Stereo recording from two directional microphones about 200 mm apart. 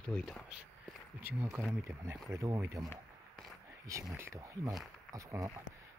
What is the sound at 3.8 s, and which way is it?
Speech, 15° right (ahead or behind).